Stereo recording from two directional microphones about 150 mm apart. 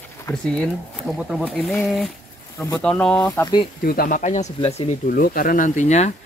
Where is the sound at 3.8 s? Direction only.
75° left (ahead or behind); by 4.9 s 45° left (ahead or behind).